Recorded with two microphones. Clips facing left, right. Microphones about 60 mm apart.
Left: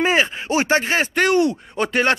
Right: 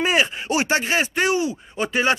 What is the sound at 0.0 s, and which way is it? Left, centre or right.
Speech, left.